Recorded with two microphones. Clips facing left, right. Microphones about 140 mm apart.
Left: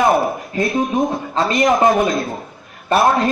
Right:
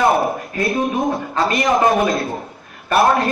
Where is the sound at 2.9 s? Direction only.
25° left (ahead or behind).